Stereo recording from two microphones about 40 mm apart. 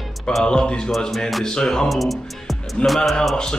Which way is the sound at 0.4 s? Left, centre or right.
Left.